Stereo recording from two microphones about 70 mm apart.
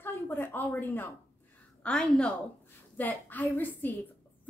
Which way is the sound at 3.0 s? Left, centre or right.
Left.